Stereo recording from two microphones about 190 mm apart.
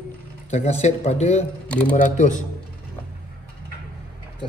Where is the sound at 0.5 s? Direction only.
35° left (ahead or behind).